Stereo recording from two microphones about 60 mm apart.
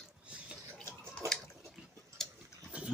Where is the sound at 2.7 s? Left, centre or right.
Centre.